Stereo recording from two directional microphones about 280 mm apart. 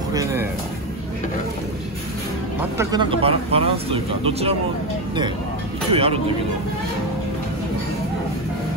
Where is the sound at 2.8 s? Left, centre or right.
Centre.